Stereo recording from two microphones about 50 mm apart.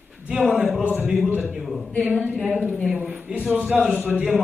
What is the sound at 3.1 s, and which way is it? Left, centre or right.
Speech, right.